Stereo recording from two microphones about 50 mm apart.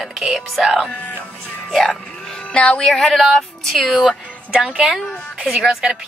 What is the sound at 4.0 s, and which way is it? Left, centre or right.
Speech, centre.